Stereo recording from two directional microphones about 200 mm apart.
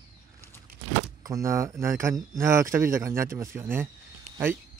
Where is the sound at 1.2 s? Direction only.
15° right (ahead or behind).